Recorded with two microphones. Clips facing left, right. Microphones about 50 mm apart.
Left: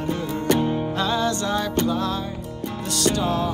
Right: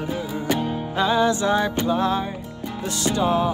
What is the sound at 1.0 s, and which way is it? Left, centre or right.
Music, centre.